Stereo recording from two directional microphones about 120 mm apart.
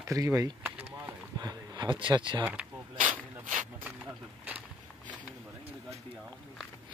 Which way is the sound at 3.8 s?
10° right (ahead or behind).